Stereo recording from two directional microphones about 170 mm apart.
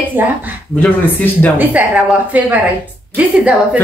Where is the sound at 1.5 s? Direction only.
5° right (ahead or behind).